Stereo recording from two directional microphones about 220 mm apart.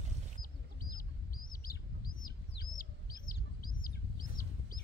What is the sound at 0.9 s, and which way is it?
Chicken, 40° left (ahead or behind).